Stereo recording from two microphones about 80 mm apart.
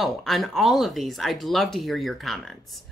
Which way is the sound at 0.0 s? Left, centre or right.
Centre.